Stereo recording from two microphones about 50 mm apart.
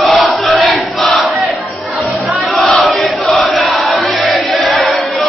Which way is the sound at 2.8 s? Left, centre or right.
Centre.